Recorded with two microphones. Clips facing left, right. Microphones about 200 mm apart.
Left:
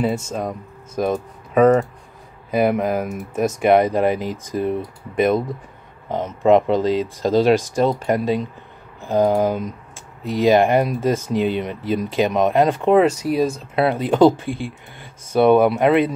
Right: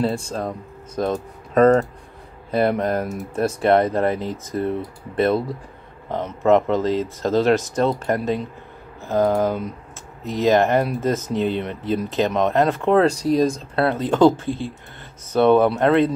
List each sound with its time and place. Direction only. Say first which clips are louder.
0.0 s speech: left 1 dB; 10° left (ahead or behind)